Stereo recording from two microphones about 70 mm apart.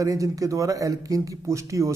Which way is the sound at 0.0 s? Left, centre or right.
Right.